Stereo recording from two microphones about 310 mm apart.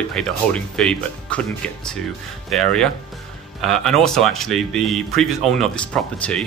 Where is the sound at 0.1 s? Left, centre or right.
Centre.